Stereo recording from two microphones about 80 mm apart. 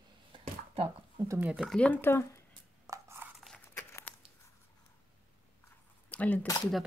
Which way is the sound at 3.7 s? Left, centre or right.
Left.